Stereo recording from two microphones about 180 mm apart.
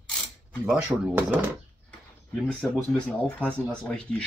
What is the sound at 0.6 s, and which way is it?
Mechanisms, 10° right (ahead or behind).